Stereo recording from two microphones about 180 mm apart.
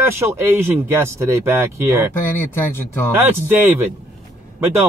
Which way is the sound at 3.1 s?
10° right (ahead or behind).